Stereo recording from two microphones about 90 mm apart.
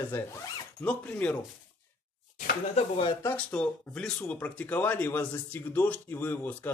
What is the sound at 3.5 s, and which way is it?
Speech, 10° left (ahead or behind).